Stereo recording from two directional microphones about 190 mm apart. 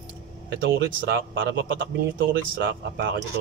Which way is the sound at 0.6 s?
70° right (ahead or behind).